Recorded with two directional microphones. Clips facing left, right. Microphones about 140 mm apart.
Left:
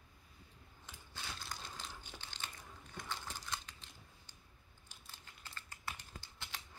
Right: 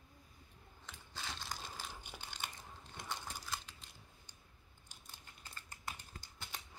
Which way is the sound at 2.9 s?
20° right (ahead or behind).